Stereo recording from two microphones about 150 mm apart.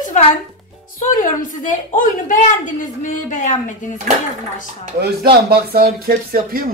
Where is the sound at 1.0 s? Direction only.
60° left (ahead or behind).